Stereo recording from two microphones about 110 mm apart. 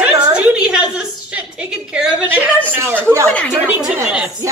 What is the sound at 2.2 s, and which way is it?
Speech, 15° right (ahead or behind).